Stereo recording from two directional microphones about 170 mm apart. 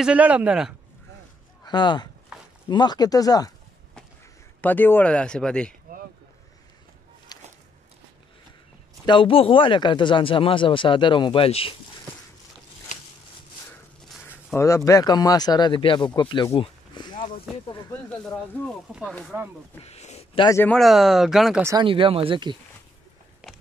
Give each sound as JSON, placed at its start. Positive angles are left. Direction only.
{"t": 0.0, "sound": "speech", "side_deg": -5}
{"t": 1.6, "sound": "speech", "side_deg": 25}
{"t": 4.6, "sound": "speech", "side_deg": 10}
{"t": 7.3, "sound": "a sound", "side_deg": 25}
{"t": 9.0, "sound": "speech", "side_deg": 30}
{"t": 14.0, "sound": "a sound", "side_deg": 10}
{"t": 14.9, "sound": "speech", "side_deg": 20}
{"t": 16.5, "sound": "a sound", "side_deg": 25}
{"t": 17.5, "sound": "speech", "side_deg": 0}
{"t": 19.8, "sound": "a sound", "side_deg": 40}
{"t": 20.4, "sound": "speech", "side_deg": 15}
{"t": 20.7, "sound": "speech", "side_deg": 0}
{"t": 21.6, "sound": "speech", "side_deg": -25}
{"t": 23.4, "sound": "biting", "side_deg": -5}